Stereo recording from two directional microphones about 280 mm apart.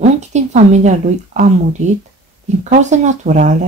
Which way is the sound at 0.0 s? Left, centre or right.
Right.